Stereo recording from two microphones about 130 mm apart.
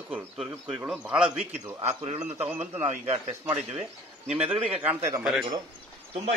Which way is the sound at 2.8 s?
65° right (ahead or behind).